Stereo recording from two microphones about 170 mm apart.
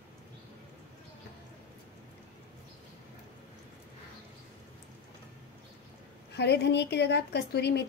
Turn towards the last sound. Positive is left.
turn(degrees=75)  # may be behind; listen again after turning